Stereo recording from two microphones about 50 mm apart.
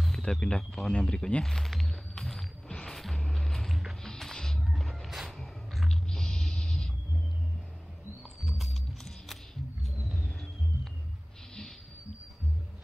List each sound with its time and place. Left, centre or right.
0.0 s speech: centre
1.4 s speech: centre
1.9 s music: centre
6.0 s a sound: centre
8.5 s music: centre
9.8 s music: centre